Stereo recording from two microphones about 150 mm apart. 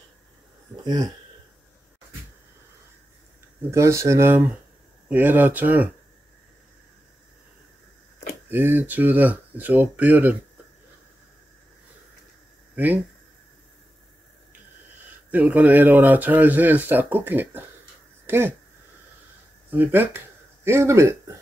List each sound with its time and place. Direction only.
0.8 s speech: 25° right (ahead or behind)
3.7 s speech: 20° right (ahead or behind)
8.5 s speech: 15° right (ahead or behind)
12.7 s speech: 10° right (ahead or behind)
15.3 s speech: 10° right (ahead or behind)
18.2 s a sound: 15° right (ahead or behind)
19.7 s speech: 15° right (ahead or behind)